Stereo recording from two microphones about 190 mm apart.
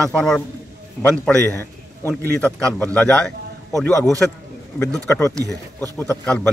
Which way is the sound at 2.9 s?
5° left (ahead or behind).